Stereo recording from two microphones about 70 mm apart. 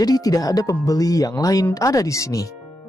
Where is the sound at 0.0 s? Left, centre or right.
Left.